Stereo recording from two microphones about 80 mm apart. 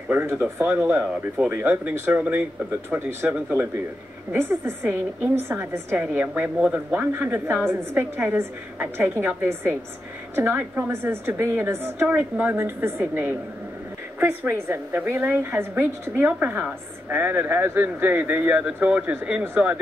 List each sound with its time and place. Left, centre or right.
0.1 s speech: right
1.0 s speech: centre
1.6 s speech: right
2.9 s speech: centre
4.3 s speech: right
12.1 s speech: centre
14.5 s speech: right